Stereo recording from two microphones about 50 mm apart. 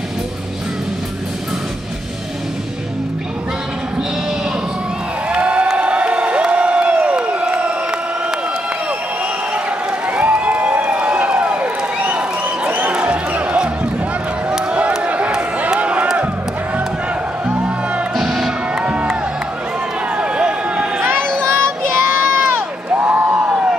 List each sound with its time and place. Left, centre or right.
5.3 s crowd: right
5.8 s a sound: right
10.0 s a sound: right
12.9 s music: right
15.0 s a sound: right
17.6 s music: right
18.1 s music: centre
18.8 s music: right
20.2 s run: right
21.4 s child singing: right
22.1 s crowd: right
22.8 s a sound: right